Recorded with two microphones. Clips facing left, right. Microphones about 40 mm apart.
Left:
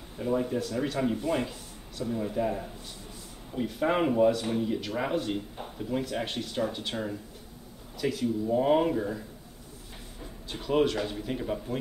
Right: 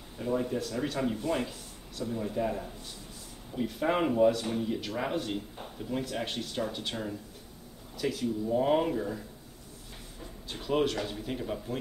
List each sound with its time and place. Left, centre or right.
0.2 s speech: centre
10.5 s speech: centre